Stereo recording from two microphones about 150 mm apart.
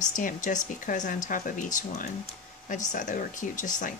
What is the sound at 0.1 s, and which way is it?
Speech, 60° left (ahead or behind).